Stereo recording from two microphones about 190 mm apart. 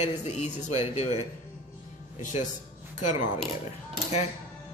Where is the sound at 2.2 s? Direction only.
40° left (ahead or behind).